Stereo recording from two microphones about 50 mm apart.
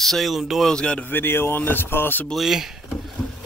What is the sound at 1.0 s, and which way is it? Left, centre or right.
Speech, left.